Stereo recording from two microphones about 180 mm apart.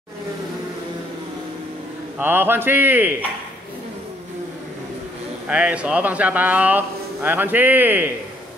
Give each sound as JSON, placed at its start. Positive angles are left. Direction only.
{"t": 2.1, "sound": "speech", "side_deg": -10}
{"t": 5.5, "sound": "speech", "side_deg": -5}